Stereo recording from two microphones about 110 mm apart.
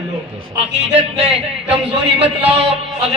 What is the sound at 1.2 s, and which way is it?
A man's voice, 60° right (ahead or behind).